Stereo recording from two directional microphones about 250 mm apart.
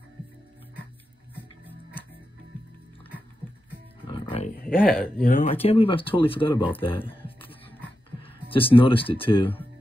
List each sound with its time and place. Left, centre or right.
4.1 s roaring cats: left
4.6 s a sound: left
5.1 s speech: left
5.4 s speech: left
8.2 s speech: left